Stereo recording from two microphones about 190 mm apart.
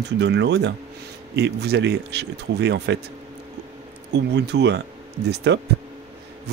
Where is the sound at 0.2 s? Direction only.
65° right (ahead or behind).